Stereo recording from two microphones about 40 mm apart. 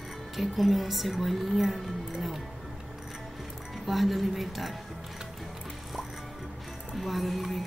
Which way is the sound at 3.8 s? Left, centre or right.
Centre.